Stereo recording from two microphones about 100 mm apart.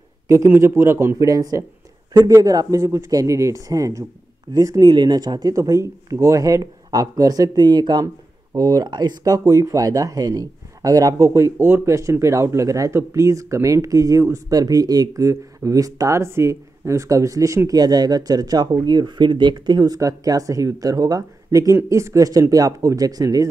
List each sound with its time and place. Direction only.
0.6 s speech: 25° right (ahead or behind)
17.6 s speech: 40° right (ahead or behind)